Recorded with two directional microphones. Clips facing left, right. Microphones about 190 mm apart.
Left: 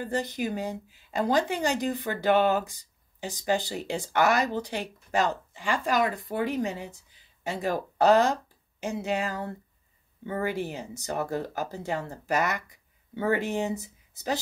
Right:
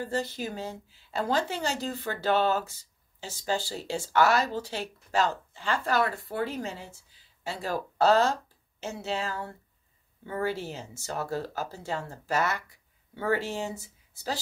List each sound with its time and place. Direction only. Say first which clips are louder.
0.0 s a woman's voice: left 2 dB; 15° left (ahead or behind)